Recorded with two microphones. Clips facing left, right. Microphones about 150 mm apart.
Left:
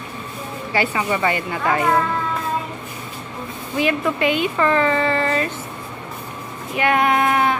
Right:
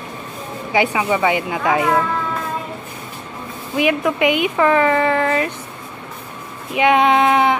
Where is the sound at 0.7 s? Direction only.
15° right (ahead or behind).